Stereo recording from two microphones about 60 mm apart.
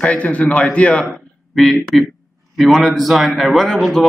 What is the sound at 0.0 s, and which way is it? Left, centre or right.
Speech, left.